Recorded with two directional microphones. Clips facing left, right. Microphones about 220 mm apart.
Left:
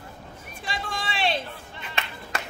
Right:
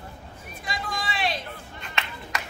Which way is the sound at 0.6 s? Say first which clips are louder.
Even; 30° left (ahead or behind).